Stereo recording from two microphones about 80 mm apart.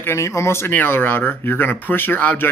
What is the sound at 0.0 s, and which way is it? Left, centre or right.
Speech, left.